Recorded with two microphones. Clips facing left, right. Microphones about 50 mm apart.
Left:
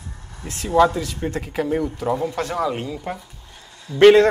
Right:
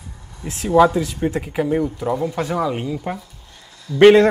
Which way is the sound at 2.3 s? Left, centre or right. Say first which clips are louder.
Right 2 dB; centre.